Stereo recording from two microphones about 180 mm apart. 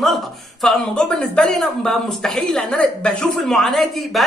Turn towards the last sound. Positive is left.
turn(degrees=0)  # may be behind; listen again after turning